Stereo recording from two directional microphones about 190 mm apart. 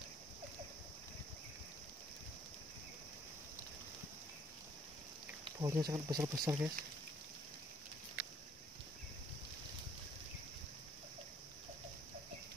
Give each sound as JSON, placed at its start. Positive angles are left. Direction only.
{"t": 5.4, "sound": "speech", "side_deg": -20}